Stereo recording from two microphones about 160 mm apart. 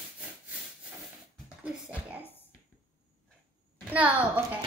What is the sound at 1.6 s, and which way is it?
Speech, 5° right (ahead or behind).